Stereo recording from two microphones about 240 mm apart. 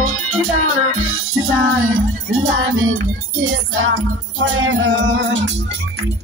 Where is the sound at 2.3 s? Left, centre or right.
Right.